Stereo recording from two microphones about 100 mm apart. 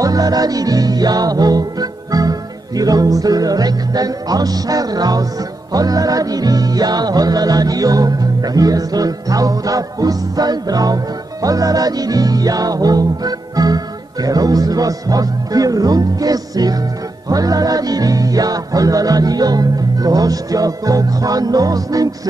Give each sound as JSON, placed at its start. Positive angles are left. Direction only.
{"t": 0.0, "sound": "music", "side_deg": -40}